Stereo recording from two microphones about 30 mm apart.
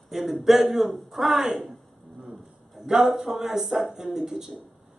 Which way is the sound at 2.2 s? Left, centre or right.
Centre.